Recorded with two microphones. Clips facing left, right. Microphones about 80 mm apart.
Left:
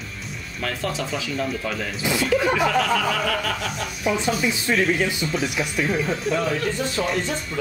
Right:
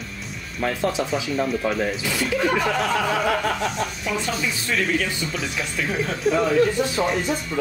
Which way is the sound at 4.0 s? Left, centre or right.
Centre.